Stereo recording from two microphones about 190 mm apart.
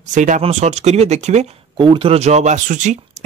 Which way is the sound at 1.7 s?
25° right (ahead or behind).